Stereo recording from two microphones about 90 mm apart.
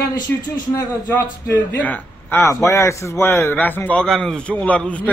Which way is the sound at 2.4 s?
30° left (ahead or behind).